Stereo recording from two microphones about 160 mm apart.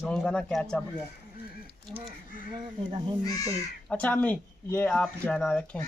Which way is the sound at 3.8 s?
10° left (ahead or behind).